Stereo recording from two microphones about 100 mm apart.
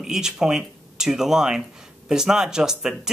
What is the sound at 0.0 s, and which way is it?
Speech, 5° right (ahead or behind).